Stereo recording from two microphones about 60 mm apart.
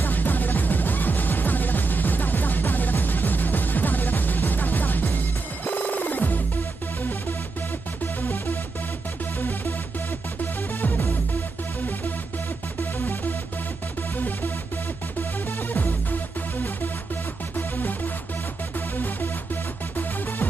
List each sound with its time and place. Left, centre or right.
0.0 s music: left
14.1 s music: left
15.7 s music: left